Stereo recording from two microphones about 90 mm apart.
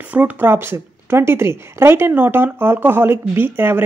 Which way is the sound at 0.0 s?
15° right (ahead or behind).